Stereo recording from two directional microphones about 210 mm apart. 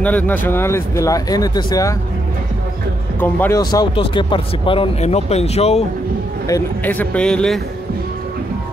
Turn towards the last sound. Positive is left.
turn(degrees=5)  # may be behind; listen again after turning